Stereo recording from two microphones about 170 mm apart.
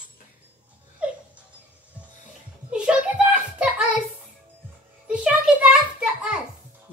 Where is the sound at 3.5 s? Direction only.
5° right (ahead or behind).